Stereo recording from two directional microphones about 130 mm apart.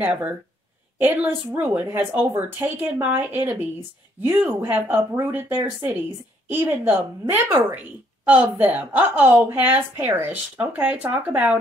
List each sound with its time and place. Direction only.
0.0 s speech: 10° right (ahead or behind)